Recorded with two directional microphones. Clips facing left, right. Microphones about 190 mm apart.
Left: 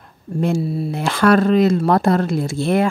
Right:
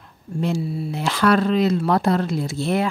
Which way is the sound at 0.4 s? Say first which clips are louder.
Left 4 dB; 45° left (ahead or behind).